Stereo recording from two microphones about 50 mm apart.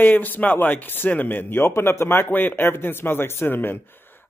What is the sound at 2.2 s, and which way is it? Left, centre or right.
Speech, left.